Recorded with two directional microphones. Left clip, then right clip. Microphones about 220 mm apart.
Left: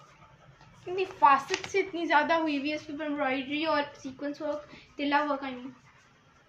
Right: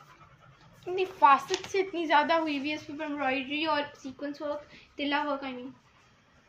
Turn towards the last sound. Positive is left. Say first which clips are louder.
# left 2 dB
turn(degrees=-20)  # may be behind; listen again after turning